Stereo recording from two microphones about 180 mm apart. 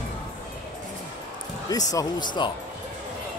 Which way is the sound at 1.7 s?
20° left (ahead or behind).